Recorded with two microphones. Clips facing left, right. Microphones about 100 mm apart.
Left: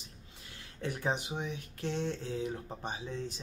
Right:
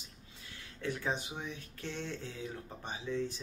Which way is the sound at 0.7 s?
20° left (ahead or behind).